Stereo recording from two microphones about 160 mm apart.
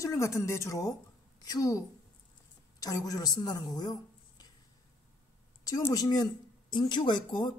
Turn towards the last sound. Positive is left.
turn(degrees=30)  # may be behind; listen again after turning